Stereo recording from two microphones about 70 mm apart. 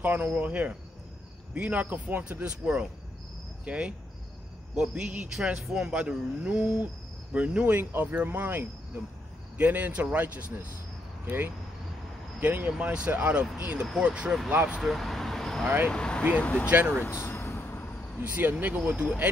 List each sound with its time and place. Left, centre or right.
0.0 s speech: right
2.4 s speech: centre
14.8 s speech: centre; by 16.6 s left
17.0 s vehicle: left
18.3 s speech: right
18.9 s speech: centre